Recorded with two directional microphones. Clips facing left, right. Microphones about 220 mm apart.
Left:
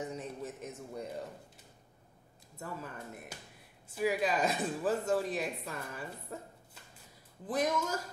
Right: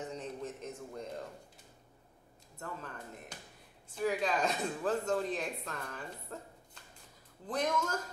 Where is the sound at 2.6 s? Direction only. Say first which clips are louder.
Left 2 dB; 10° left (ahead or behind).